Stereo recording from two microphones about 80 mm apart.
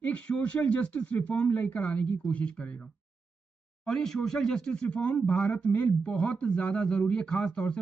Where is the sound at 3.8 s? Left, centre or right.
Centre.